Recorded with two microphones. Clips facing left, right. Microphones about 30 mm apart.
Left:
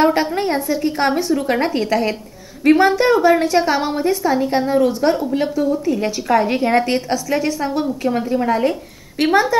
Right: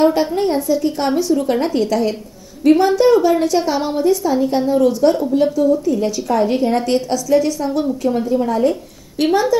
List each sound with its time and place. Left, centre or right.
0.0 s a woman's voice: left